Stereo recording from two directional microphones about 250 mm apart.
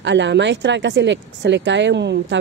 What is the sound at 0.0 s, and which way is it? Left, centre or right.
Speech, right.